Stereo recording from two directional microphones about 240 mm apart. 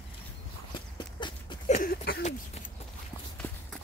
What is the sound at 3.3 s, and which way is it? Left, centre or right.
Clip-clop, centre.